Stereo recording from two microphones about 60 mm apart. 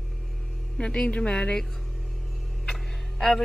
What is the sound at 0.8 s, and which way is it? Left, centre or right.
Speech, centre.